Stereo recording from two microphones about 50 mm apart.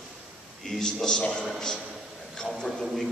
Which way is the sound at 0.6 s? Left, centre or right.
Centre.